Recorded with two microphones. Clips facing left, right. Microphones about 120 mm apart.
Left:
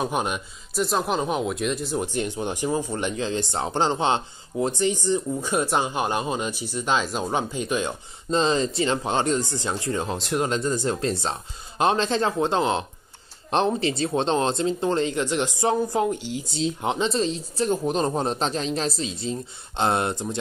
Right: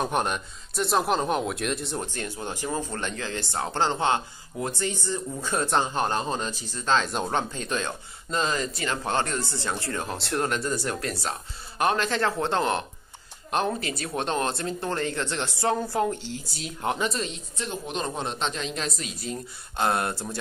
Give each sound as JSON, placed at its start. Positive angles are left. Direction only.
{"t": 0.0, "sound": "speech", "side_deg": 5}
{"t": 2.1, "sound": "speech", "side_deg": 20}
{"t": 8.3, "sound": "speech", "side_deg": 25}